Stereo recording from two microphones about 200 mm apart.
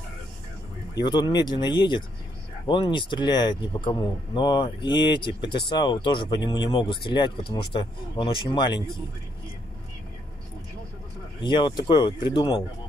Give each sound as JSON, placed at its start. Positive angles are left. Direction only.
{"t": 0.9, "sound": "speech", "side_deg": 20}
{"t": 11.4, "sound": "speech", "side_deg": 25}